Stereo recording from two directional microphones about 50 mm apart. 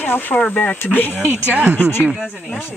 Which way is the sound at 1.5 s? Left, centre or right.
Right.